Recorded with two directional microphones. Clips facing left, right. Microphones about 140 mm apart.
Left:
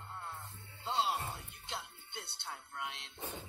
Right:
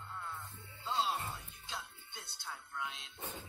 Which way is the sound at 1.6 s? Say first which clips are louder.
Left 2 dB; 65° left (ahead or behind).